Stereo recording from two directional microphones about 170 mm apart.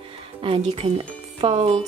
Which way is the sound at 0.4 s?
35° right (ahead or behind).